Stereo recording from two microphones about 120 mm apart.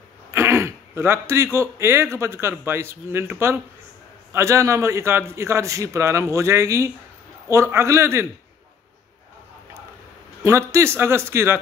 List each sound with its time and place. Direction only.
0.3 s a man's voice: 20° right (ahead or behind)
10.4 s a man's voice: 25° right (ahead or behind)